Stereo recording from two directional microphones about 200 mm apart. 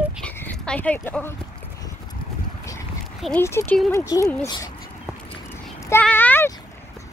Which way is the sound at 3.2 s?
10° left (ahead or behind).